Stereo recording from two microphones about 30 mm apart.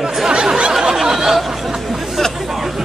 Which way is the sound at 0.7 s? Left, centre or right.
Centre.